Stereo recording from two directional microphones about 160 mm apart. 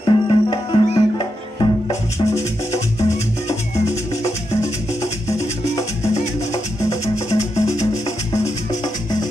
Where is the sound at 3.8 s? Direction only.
20° left (ahead or behind).